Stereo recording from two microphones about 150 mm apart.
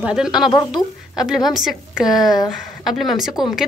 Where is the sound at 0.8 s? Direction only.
30° left (ahead or behind).